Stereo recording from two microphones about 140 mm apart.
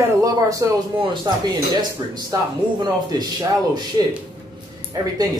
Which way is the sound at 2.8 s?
30° right (ahead or behind).